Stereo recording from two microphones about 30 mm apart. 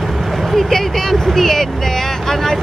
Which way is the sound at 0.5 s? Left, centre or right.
Centre.